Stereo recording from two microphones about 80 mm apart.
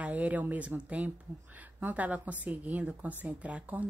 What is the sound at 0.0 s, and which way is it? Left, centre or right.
A woman's voice, centre.